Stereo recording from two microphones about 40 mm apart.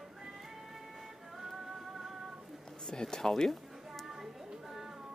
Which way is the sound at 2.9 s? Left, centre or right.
Centre.